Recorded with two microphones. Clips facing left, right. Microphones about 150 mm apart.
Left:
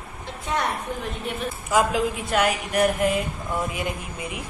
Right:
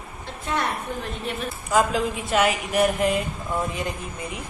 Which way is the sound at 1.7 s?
5° left (ahead or behind).